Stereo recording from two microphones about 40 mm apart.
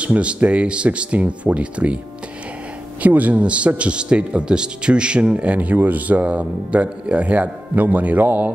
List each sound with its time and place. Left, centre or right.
0.0 s a man's voice: right
3.0 s a man's voice: right